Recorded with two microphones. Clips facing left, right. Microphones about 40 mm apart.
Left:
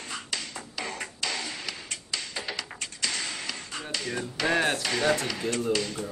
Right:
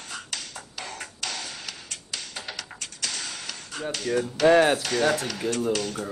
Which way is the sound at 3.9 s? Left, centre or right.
Left.